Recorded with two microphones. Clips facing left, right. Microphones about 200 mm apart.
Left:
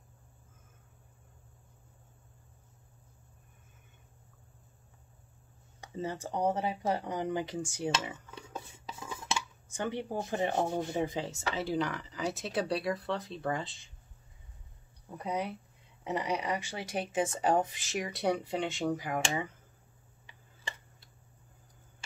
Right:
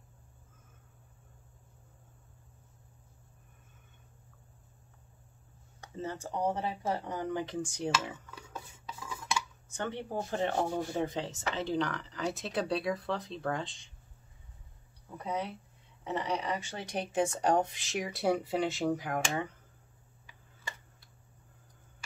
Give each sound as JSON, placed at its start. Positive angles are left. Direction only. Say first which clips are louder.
{"t": 5.8, "sound": "a sound", "louder": "left 2 dB", "side_deg": 10}
{"t": 6.2, "sound": "speech", "louder": "left 2 dB", "side_deg": 20}
{"t": 9.8, "sound": "speech", "louder": "left 1 dB", "side_deg": 10}
{"t": 15.2, "sound": "speech", "louder": "left 1 dB", "side_deg": 15}
{"t": 20.2, "sound": "tick-tock", "louder": "left 1 dB", "side_deg": 25}